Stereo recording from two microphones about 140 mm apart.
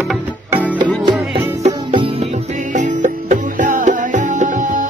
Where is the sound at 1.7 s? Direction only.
30° right (ahead or behind).